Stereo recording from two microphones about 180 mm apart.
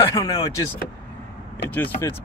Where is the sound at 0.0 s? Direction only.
20° left (ahead or behind).